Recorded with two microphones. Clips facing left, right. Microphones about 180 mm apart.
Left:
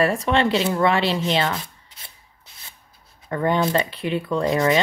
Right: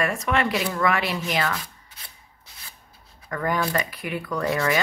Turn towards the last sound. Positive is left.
turn(degrees=20)  # may be behind; listen again after turning